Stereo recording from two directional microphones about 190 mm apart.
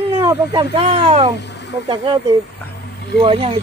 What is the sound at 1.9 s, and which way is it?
Speech, 30° right (ahead or behind).